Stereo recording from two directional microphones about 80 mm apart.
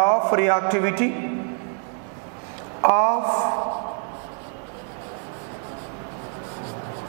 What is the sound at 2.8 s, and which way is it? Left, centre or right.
Speech, centre.